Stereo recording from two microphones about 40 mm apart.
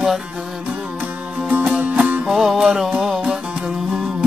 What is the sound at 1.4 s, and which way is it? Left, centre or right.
Music, right.